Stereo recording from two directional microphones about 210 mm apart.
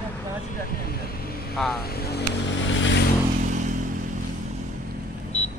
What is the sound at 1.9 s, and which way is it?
Vehicle, 50° left (ahead or behind).